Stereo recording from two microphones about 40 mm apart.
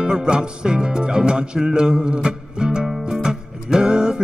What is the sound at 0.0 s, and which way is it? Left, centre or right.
Music, right.